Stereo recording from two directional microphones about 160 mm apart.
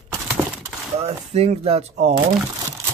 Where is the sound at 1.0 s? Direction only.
40° right (ahead or behind).